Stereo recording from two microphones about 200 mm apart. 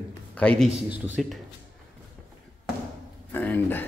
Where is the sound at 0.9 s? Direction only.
10° right (ahead or behind).